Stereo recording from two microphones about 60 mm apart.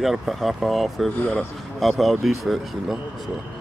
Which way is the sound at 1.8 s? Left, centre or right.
Centre.